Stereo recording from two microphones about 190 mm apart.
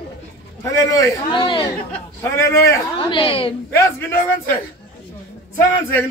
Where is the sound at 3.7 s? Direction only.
15° left (ahead or behind).